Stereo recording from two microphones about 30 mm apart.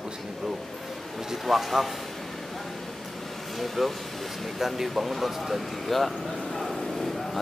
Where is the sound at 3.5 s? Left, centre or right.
Centre.